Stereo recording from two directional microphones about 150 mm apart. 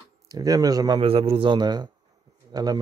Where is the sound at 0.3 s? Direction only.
25° right (ahead or behind).